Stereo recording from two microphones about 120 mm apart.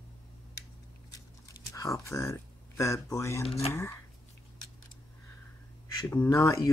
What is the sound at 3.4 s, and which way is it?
Speech, 60° left (ahead or behind).